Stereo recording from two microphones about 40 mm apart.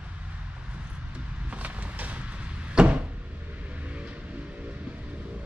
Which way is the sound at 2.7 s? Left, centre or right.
Right.